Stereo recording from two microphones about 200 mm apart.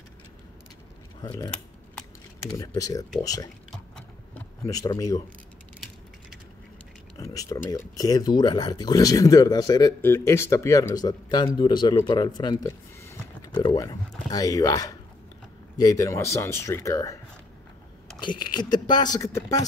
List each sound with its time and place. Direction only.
2.5 s speech: 15° left (ahead or behind)
4.6 s speech: 20° left (ahead or behind)
7.2 s speech: 15° left (ahead or behind)
18.2 s speech: 20° left (ahead or behind)